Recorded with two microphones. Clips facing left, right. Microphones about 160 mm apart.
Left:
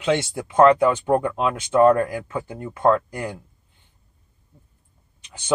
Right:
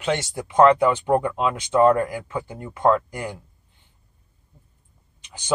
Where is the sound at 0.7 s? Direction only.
10° right (ahead or behind).